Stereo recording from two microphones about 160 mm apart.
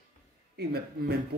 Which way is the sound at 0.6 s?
90° right.